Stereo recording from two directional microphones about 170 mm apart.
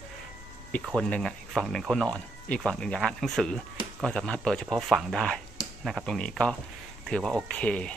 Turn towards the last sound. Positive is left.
turn(degrees=5)  # may be behind; listen again after turning